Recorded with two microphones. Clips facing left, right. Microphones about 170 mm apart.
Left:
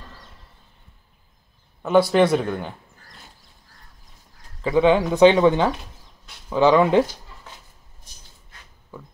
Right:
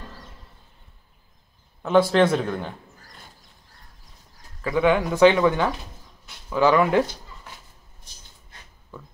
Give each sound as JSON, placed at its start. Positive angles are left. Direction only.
{"t": 1.8, "sound": "speech", "side_deg": 5}
{"t": 4.6, "sound": "speech", "side_deg": 25}